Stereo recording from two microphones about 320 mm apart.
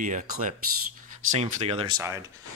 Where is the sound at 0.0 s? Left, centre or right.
Right.